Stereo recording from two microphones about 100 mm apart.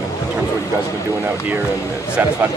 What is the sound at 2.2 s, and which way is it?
Speech, 20° right (ahead or behind).